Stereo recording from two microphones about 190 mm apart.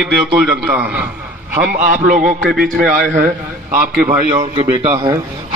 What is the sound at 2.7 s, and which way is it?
A man's voice, 50° right (ahead or behind).